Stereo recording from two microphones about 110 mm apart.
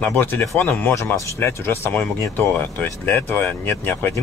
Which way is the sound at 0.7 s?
20° left (ahead or behind).